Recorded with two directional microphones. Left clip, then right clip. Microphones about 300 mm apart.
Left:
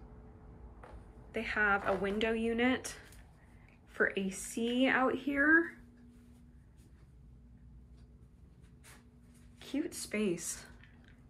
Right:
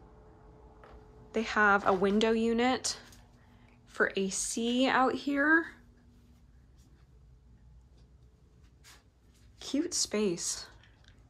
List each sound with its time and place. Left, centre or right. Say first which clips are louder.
1.3 s speech: right 5 dB; centre
9.6 s speech: right 7 dB; centre